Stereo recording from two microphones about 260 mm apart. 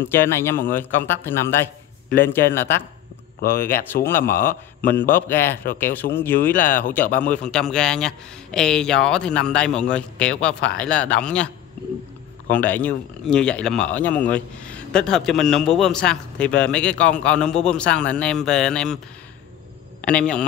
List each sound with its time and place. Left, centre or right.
0.0 s a man's voice: centre
3.3 s speech: left
7.2 s speech: centre
20.0 s a man's voice: centre